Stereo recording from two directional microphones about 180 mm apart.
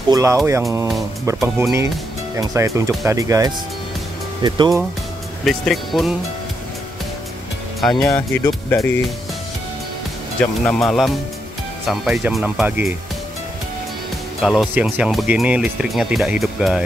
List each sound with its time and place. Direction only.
0.1 s speech: 15° right (ahead or behind)
5.4 s speech: centre (ahead or behind)
8.1 s speech: 15° left (ahead or behind)
10.4 s speech: 5° left (ahead or behind)
14.4 s speech: centre (ahead or behind)